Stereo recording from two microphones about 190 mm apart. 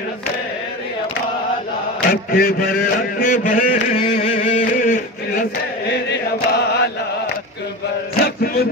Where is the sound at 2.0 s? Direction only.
50° left (ahead or behind).